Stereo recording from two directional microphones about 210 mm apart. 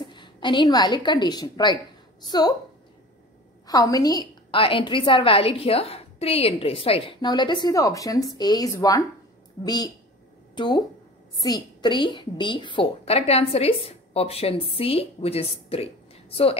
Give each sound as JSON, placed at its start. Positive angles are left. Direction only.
{"t": 0.1, "sound": "a woman's voice", "side_deg": 20}
{"t": 3.6, "sound": "a woman's voice", "side_deg": 15}
{"t": 10.5, "sound": "a sound", "side_deg": 20}
{"t": 11.3, "sound": "a woman's voice", "side_deg": 20}